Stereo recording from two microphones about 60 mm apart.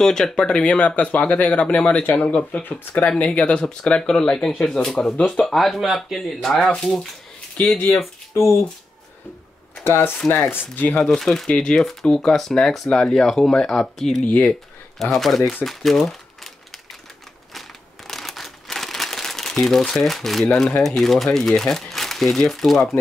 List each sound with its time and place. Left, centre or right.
0.0 s speech: centre
2.6 s speech: left
3.1 s speech: centre
8.4 s speech: left
9.8 s speech: left
10.9 s speech: centre
11.3 s speech: centre
14.2 s speech: left
15.0 s speech: centre
17.6 s crumpling: centre
20.8 s speech: centre